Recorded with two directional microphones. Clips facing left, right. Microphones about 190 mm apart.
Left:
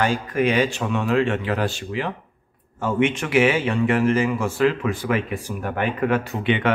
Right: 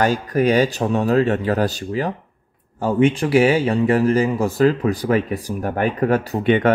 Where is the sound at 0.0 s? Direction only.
40° right (ahead or behind).